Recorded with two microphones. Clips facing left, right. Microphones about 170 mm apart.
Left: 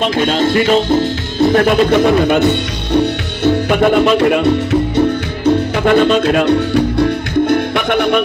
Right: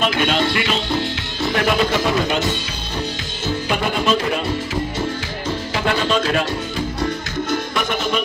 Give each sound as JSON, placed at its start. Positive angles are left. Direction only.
{"t": 0.1, "sound": "speech", "side_deg": 40}
{"t": 5.9, "sound": "speech", "side_deg": 55}
{"t": 7.4, "sound": "music", "side_deg": 60}